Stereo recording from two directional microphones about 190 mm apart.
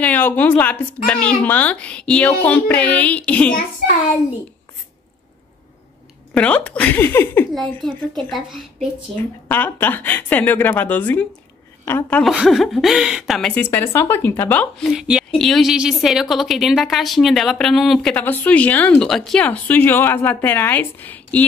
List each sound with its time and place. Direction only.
0.0 s a woman's voice: 10° left (ahead or behind)
6.3 s a woman's voice: 5° left (ahead or behind)
9.5 s a woman's voice: 10° left (ahead or behind)
12.2 s speech: centre (ahead or behind)